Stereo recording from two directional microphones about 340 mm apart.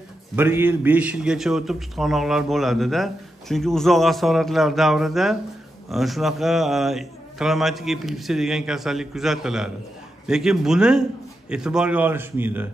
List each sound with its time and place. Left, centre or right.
0.4 s a man's voice: centre